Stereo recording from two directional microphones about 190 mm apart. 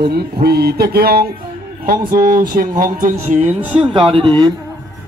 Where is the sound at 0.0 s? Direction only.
55° right (ahead or behind).